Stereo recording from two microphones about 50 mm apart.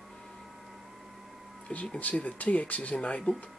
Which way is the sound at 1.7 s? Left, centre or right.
Left.